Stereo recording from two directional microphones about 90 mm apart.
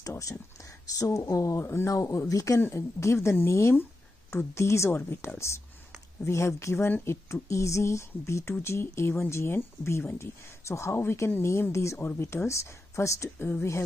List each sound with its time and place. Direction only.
0.0 s a woman's voice: 40° left (ahead or behind)